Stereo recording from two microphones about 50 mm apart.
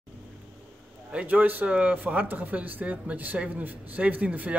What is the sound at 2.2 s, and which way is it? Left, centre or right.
A man's voice, right.